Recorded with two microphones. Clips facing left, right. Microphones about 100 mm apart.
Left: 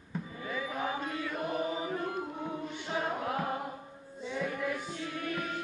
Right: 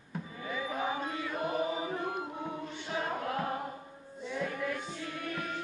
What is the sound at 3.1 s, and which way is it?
Choir, 10° left (ahead or behind).